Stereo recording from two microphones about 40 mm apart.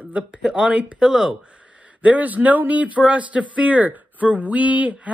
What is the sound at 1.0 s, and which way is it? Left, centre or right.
Speech, centre.